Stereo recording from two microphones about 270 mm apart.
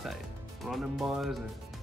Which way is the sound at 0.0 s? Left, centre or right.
Centre.